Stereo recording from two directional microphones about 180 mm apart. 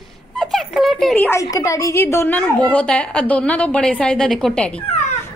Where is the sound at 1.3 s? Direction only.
15° left (ahead or behind).